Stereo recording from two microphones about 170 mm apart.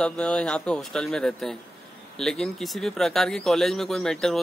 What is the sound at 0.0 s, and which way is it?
Speech, 5° left (ahead or behind).